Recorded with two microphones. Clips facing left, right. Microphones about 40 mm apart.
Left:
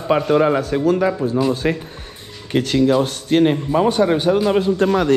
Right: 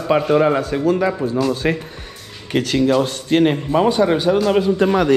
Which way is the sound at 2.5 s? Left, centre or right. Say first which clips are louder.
Even; right.